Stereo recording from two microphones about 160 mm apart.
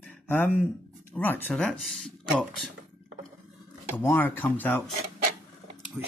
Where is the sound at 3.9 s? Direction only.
15° left (ahead or behind).